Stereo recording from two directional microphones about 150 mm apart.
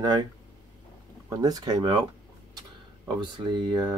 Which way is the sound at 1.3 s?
25° right (ahead or behind).